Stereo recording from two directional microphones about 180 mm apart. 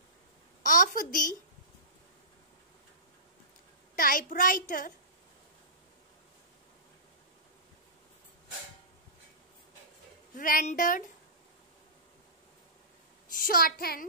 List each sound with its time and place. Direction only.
0.6 s a sound: 45° left (ahead or behind)
3.9 s a child's voice: 50° left (ahead or behind)
10.3 s a woman's voice: 50° left (ahead or behind)
13.3 s a child's voice: 50° left (ahead or behind)